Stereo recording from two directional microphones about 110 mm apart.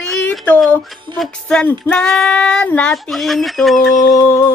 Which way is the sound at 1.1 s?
Centre (ahead or behind).